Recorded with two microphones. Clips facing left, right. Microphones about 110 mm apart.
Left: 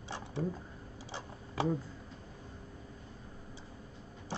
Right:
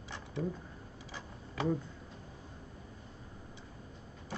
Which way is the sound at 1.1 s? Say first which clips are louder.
Left 3 dB; 30° left (ahead or behind).